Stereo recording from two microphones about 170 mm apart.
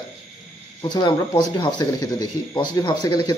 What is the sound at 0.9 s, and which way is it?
Speech, 25° left (ahead or behind).